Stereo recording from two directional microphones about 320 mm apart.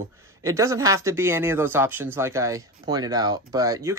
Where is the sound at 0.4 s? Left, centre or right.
Centre.